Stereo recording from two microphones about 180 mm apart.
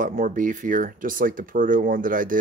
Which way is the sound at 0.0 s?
45° right (ahead or behind).